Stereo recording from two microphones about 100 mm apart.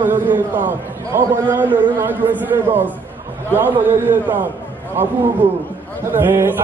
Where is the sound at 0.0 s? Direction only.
20° right (ahead or behind).